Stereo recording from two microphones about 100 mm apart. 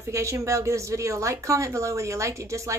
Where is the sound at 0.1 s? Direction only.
30° right (ahead or behind).